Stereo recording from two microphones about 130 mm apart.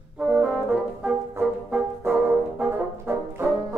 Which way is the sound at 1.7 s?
10° right (ahead or behind).